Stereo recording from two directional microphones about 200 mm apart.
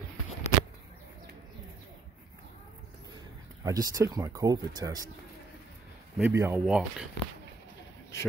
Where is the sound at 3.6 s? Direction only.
15° right (ahead or behind).